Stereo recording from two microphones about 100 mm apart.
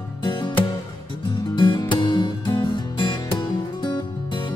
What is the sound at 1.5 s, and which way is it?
Music, 50° left (ahead or behind).